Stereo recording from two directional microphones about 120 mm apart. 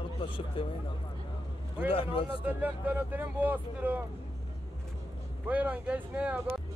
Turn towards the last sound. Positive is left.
turn(degrees=-15)  # may be behind; listen again after turning